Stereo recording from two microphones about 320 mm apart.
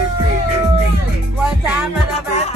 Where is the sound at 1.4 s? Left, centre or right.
Centre.